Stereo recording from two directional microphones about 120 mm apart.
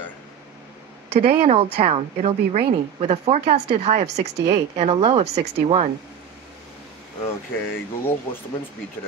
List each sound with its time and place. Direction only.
1.2 s a woman's voice: 55° right (ahead or behind)
7.2 s speech: 20° left (ahead or behind)